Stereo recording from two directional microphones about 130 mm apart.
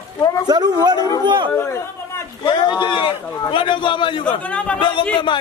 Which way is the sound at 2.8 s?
35° left (ahead or behind).